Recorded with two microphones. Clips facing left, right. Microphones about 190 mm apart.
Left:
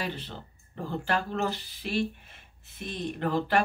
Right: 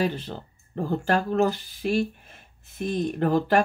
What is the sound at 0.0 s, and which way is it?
Speech, 45° right (ahead or behind).